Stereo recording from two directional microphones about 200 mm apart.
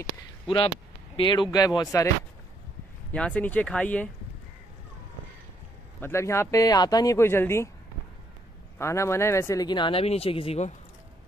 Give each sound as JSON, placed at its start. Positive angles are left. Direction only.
{"t": 1.1, "sound": "speech", "side_deg": 25}
{"t": 3.1, "sound": "a man's voice", "side_deg": 5}
{"t": 5.9, "sound": "a man's voice", "side_deg": 10}
{"t": 8.7, "sound": "speech", "side_deg": 15}